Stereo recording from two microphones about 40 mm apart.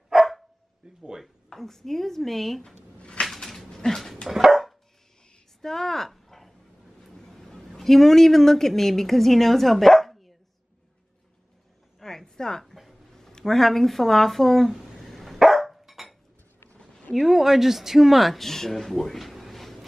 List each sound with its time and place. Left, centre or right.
0.1 s dog: centre
0.8 s speech: right
1.5 s a woman's voice: centre
3.0 s a sound: left
3.3 s dog: centre
4.3 s dog: centre
5.6 s a sound: centre
7.0 s speech: centre
12.0 s a sound: centre
13.1 s speech: centre
15.0 s dog: centre
16.6 s a sound: left
17.1 s speech: centre